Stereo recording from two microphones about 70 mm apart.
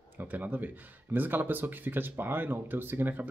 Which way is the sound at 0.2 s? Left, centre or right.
Right.